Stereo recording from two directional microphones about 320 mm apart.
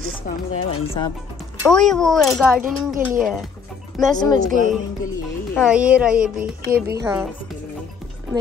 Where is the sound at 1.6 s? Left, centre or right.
Centre.